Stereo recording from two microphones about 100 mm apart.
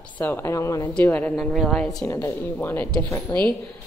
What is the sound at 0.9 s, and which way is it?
Speech, 15° left (ahead or behind).